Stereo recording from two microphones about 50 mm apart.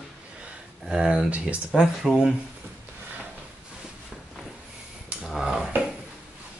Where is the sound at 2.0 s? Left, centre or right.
Centre.